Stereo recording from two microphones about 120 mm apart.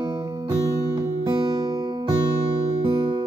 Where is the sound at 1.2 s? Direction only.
35° right (ahead or behind).